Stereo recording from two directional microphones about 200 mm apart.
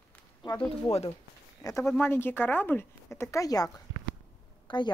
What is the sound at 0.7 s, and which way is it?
Speech, 30° left (ahead or behind).